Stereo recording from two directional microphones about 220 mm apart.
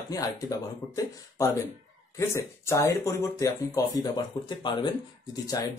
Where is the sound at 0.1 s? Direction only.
15° left (ahead or behind).